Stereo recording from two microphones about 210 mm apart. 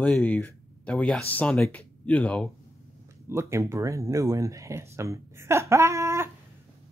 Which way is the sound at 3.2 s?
10° right (ahead or behind).